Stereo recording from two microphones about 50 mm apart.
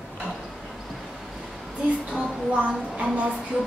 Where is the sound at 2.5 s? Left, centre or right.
Right.